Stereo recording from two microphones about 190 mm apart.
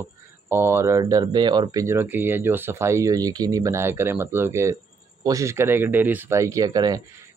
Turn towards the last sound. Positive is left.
turn(degrees=-20)  # may be behind; listen again after turning